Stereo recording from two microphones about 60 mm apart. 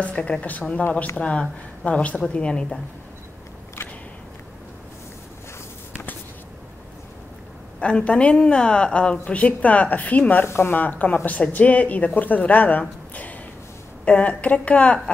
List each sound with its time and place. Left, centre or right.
0.0 s a woman's voice: centre
7.8 s a woman's voice: left
10.4 s speech: left
10.8 s a woman's voice: left